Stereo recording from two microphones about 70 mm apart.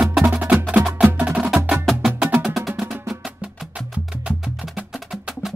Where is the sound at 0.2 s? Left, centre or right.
Centre.